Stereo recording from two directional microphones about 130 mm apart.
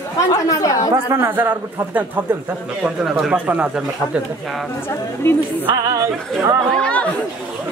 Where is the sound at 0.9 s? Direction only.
20° right (ahead or behind).